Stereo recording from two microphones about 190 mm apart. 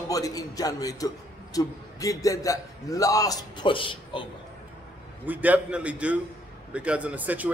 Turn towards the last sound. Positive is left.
turn(degrees=-10)  # may be behind; listen again after turning